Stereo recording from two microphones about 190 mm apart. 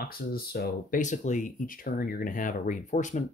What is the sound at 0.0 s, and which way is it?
Speech, 50° left (ahead or behind).